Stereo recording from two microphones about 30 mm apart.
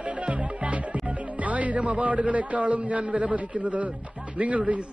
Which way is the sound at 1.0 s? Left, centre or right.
Right.